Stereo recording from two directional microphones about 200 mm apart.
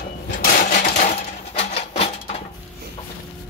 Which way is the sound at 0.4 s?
45° left (ahead or behind).